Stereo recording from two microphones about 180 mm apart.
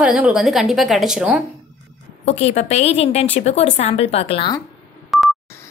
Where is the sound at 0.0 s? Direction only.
5° right (ahead or behind).